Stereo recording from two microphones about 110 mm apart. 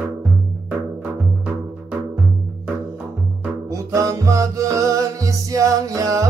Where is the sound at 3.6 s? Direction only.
30° right (ahead or behind).